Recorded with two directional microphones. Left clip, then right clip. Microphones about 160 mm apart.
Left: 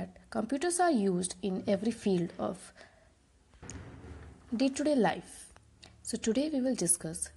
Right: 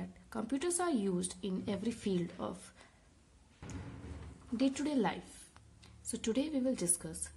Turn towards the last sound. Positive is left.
turn(degrees=30)  # may be behind; listen again after turning